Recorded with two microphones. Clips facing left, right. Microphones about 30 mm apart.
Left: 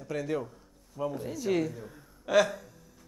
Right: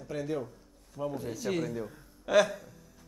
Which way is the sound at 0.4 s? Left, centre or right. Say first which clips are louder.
Even; centre.